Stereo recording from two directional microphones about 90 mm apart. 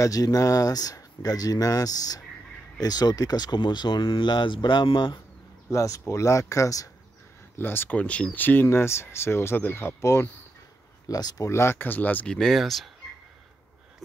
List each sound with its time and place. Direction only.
0.0 s speech: 40° left (ahead or behind); by 5.2 s 60° left (ahead or behind)
5.7 s speech: 40° left (ahead or behind)
7.5 s speech: 25° left (ahead or behind)
11.1 s speech: 45° left (ahead or behind)
11.4 s speech: 30° left (ahead or behind)
12.4 s speech: centre (ahead or behind)